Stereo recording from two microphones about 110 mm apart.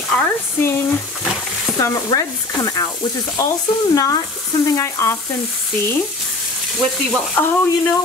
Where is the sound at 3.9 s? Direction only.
35° left (ahead or behind).